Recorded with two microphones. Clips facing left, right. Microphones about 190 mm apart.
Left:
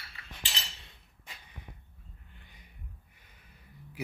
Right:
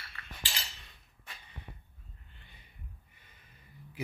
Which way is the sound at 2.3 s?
10° left (ahead or behind).